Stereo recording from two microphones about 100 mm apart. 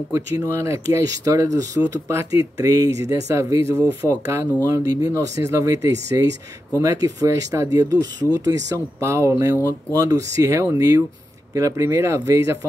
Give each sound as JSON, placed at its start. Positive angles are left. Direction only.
{"t": 0.1, "sound": "speech", "side_deg": -30}
{"t": 9.6, "sound": "speech", "side_deg": 25}
{"t": 9.9, "sound": "speech", "side_deg": -35}